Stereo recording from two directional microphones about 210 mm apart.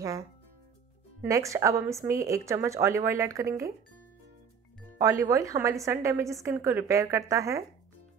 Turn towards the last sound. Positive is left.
turn(degrees=-15)  # may be behind; listen again after turning